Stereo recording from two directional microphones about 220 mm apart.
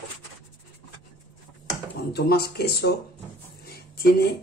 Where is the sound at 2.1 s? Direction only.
45° left (ahead or behind).